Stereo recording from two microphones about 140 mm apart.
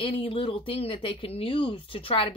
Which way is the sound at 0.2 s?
40° left (ahead or behind).